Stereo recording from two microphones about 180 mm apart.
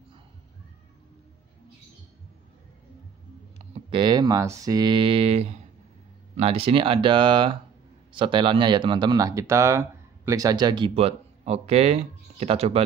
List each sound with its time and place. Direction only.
3.5 s speech: 30° right (ahead or behind)